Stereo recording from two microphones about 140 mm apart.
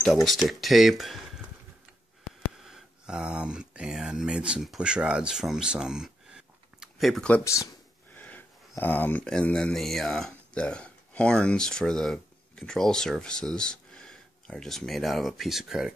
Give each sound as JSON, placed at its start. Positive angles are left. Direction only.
{"t": 0.0, "sound": "speech", "side_deg": 0}
{"t": 2.6, "sound": "speech", "side_deg": -5}
{"t": 7.4, "sound": "speech", "side_deg": 20}
{"t": 8.1, "sound": "speech", "side_deg": 10}